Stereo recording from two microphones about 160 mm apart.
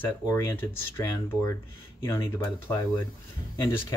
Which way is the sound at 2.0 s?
15° left (ahead or behind).